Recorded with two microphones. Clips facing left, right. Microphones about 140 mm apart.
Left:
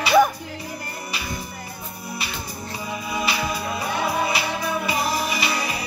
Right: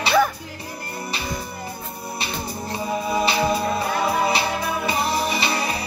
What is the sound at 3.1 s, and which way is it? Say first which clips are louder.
Music: right 5 dB; 25° right (ahead or behind).